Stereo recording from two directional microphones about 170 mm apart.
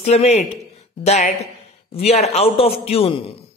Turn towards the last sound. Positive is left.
turn(degrees=35)  # may be behind; listen again after turning